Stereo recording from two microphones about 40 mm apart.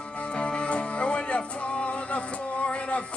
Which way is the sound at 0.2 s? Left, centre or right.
Left.